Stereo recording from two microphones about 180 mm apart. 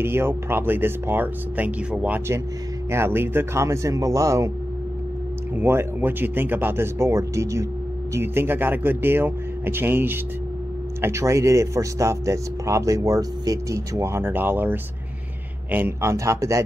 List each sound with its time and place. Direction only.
0.0 s speech: 15° right (ahead or behind)
5.6 s speech: 10° right (ahead or behind)